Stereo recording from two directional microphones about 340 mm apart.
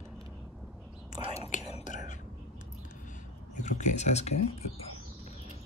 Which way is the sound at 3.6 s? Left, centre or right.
Left.